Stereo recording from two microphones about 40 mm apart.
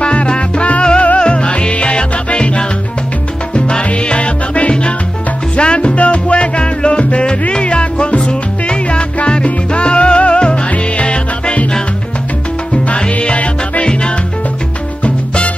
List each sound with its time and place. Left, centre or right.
0.0 s salsa music: left
3.5 s music: left
12.7 s music: left
15.0 s music: left